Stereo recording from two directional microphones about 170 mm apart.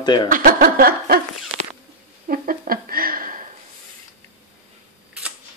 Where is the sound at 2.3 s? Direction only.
60° right (ahead or behind).